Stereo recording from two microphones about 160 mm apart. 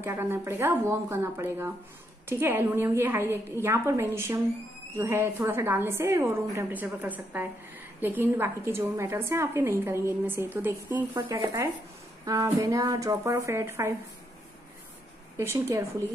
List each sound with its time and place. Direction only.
0.0 s a woman's voice: 15° right (ahead or behind)
15.3 s a woman's voice: 15° right (ahead or behind)